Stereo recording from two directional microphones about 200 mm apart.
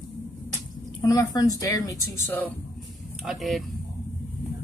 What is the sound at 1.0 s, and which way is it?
Speech, 15° left (ahead or behind).